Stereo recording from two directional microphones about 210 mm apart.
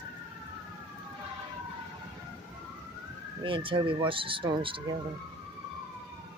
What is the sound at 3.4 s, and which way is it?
Speech, 25° right (ahead or behind).